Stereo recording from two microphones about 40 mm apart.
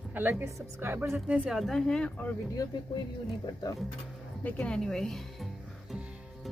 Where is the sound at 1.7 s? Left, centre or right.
Centre.